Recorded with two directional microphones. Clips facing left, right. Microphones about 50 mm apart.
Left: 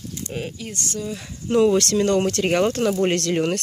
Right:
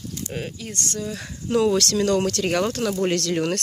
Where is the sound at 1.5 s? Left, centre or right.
Centre.